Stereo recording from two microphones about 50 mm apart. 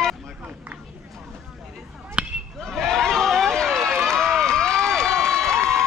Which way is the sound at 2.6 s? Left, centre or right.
Centre.